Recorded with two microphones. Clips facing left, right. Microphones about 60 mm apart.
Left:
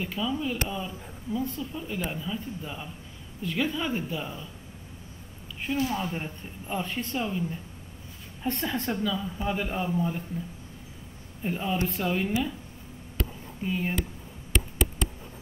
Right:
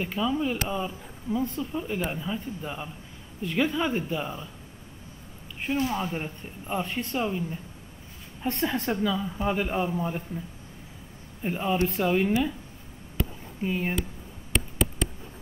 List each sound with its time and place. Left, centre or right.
0.0 s a man's voice: centre
5.7 s a man's voice: right
6.0 s speech: centre
6.8 s a man's voice: right
8.5 s a man's voice: right
11.4 s a man's voice: centre
13.6 s speech: centre
14.5 s a sound: centre